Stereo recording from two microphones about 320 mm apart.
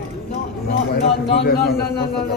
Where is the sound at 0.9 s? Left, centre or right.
Left.